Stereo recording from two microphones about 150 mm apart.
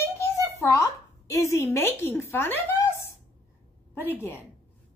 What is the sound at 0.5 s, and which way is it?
A woman's voice, 20° left (ahead or behind).